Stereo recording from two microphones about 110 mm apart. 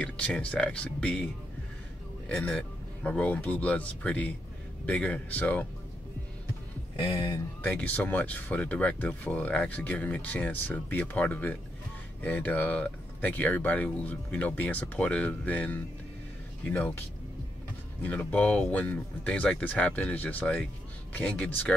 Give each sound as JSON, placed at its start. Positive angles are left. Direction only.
{"t": 0.0, "sound": "speech", "side_deg": 10}
{"t": 2.2, "sound": "a man's voice", "side_deg": 5}
{"t": 7.0, "sound": "speech", "side_deg": 50}
{"t": 7.7, "sound": "speech", "side_deg": 15}
{"t": 18.0, "sound": "speech", "side_deg": 15}